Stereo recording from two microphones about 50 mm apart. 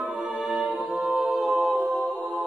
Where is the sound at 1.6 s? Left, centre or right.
Right.